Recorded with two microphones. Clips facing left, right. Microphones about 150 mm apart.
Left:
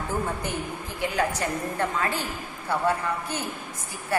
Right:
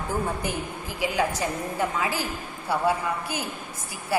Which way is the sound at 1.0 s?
5° right (ahead or behind).